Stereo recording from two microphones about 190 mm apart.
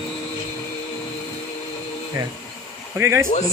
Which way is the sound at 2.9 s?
15° right (ahead or behind).